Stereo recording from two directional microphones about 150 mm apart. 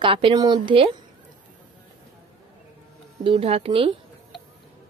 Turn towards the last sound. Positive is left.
turn(degrees=-40)  # may be behind; listen again after turning